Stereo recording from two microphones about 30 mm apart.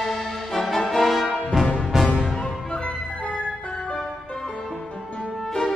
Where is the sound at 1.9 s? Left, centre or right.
Right.